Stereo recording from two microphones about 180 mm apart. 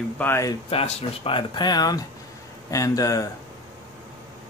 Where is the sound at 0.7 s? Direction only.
30° left (ahead or behind).